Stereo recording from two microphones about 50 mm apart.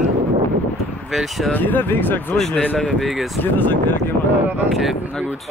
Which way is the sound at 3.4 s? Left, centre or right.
Left.